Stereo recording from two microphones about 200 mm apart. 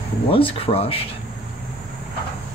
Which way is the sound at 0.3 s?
30° left (ahead or behind).